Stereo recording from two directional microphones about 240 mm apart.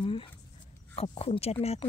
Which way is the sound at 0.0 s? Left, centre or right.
Left.